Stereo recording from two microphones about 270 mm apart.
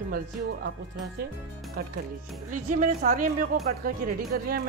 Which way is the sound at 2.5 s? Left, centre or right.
Right.